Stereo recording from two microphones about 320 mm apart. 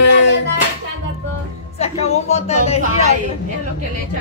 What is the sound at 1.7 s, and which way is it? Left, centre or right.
Speech, centre.